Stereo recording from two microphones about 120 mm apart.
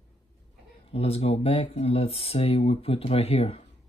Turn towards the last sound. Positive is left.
turn(degrees=55)  # may be behind; listen again after turning